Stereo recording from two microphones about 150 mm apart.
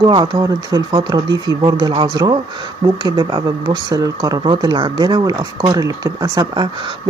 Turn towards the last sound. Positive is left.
turn(degrees=-30)  # may be behind; listen again after turning